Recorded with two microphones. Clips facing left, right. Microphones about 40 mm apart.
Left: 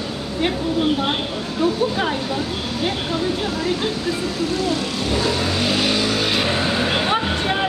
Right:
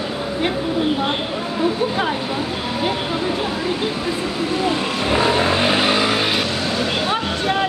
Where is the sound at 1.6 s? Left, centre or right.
Centre.